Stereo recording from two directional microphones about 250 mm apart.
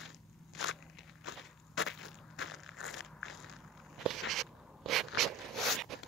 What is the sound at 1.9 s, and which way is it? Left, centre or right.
Crushing, centre.